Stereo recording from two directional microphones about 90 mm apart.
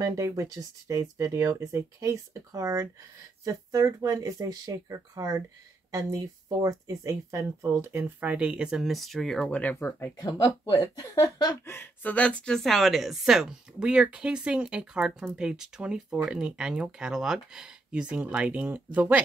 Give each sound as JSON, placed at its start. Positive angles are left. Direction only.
{"t": 0.0, "sound": "speech", "side_deg": -35}
{"t": 7.9, "sound": "speech", "side_deg": -15}
{"t": 9.4, "sound": "speech", "side_deg": 15}
{"t": 9.8, "sound": "speech", "side_deg": 25}
{"t": 10.1, "sound": "speech", "side_deg": 45}
{"t": 11.6, "sound": "speech", "side_deg": 25}